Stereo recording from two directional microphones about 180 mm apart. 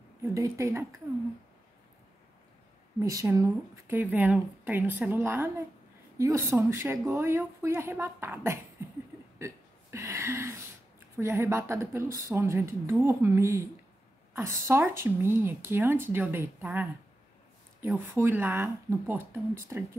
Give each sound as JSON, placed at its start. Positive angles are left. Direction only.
{"t": 0.3, "sound": "a woman's voice", "side_deg": -15}
{"t": 3.0, "sound": "a woman's voice", "side_deg": -15}
{"t": 9.4, "sound": "hiccup", "side_deg": -15}
{"t": 11.1, "sound": "a woman's voice", "side_deg": -15}